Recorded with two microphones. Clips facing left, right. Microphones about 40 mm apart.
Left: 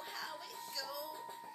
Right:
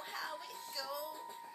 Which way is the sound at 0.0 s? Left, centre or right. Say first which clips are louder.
Right 2 dB; centre.